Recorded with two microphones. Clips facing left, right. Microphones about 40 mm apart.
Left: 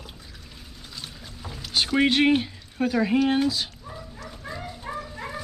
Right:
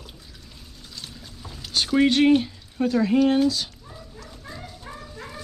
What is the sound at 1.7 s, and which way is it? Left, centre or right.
Speech, centre.